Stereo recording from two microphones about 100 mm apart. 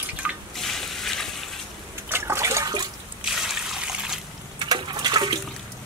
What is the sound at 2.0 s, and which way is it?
Trickle, 25° right (ahead or behind).